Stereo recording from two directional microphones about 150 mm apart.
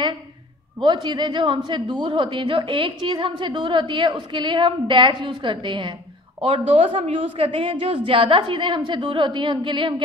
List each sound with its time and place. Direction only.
0.7 s a woman's voice: 30° right (ahead or behind)